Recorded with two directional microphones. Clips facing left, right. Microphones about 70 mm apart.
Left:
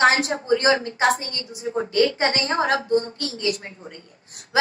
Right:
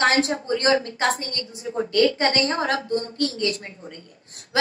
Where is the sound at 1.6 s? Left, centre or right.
Left.